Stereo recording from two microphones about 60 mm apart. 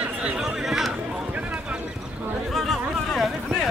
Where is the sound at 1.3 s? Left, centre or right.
Right.